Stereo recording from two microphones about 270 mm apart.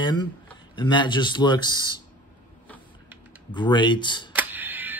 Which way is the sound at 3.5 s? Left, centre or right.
Centre.